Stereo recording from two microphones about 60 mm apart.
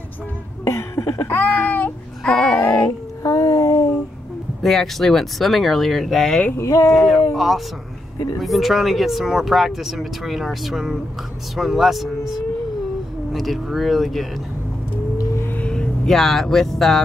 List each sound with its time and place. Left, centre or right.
0.7 s cough: left
2.7 s child singing: left
4.6 s speech: centre
6.5 s a sound: left
7.0 s speech: centre
15.6 s vehicle: centre
16.1 s speech: centre